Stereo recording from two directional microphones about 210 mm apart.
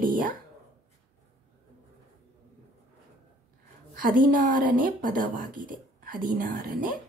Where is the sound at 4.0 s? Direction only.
40° right (ahead or behind).